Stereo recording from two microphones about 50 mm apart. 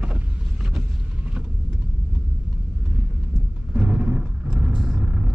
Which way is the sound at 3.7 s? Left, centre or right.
Centre.